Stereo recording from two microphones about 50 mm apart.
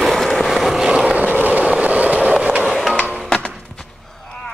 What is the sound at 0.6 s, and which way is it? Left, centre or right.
Vehicle, centre.